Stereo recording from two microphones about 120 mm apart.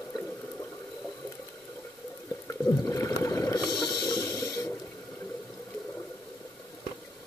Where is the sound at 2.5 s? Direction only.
25° left (ahead or behind).